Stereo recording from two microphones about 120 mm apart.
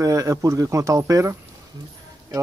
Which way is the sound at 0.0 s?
30° right (ahead or behind).